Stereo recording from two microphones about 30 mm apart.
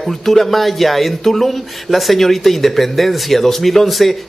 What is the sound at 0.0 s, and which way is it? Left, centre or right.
A man's voice, centre.